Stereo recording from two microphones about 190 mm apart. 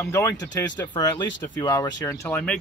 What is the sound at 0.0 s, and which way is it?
Speech, 15° left (ahead or behind).